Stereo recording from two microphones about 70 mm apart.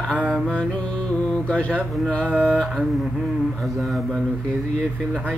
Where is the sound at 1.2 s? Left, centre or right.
Centre.